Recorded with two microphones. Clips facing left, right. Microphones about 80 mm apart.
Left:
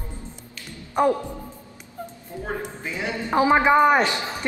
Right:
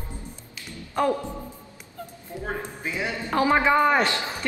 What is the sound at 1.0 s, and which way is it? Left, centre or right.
Speech, centre.